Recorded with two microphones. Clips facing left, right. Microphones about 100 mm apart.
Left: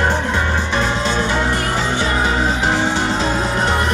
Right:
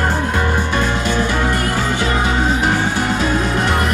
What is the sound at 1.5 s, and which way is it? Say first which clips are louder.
Music: right 1 dB; 45° right (ahead or behind).